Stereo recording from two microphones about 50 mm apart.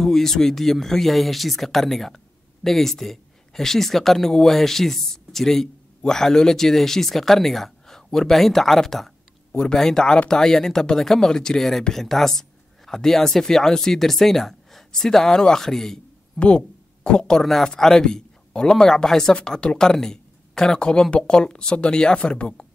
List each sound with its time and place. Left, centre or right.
0.0 s speech: centre
16.3 s speech: left